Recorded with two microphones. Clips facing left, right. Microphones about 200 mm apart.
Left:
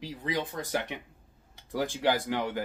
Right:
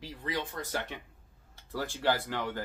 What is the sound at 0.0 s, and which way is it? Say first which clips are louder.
Speech: left 3 dB; 15° left (ahead or behind).